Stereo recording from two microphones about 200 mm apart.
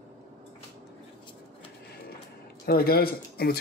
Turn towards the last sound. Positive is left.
turn(degrees=50)  # may be behind; listen again after turning